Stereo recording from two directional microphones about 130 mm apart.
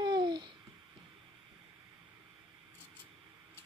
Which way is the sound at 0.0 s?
35° right (ahead or behind).